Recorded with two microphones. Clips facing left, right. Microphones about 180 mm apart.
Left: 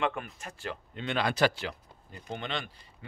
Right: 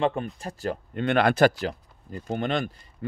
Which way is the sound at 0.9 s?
60° right (ahead or behind).